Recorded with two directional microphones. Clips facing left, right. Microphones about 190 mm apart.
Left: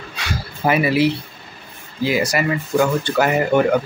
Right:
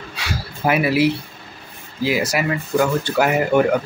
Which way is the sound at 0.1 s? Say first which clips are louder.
Left 1 dB; 5° right (ahead or behind).